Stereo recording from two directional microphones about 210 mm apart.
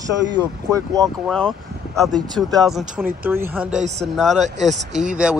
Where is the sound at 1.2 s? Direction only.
5° left (ahead or behind).